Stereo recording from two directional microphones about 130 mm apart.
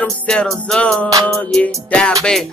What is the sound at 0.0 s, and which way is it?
Music, 5° left (ahead or behind).